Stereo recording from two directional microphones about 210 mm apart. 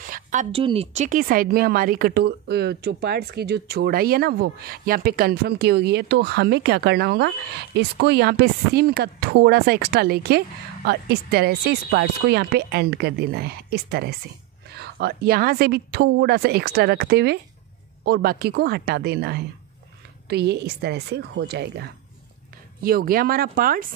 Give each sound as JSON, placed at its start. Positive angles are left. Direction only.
{"t": 0.0, "sound": "a woman's voice", "side_deg": -40}